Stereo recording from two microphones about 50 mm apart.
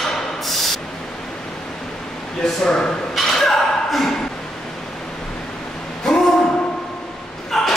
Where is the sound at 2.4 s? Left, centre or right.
Centre.